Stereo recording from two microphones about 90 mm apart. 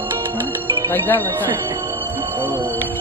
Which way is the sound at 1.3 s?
35° right (ahead or behind).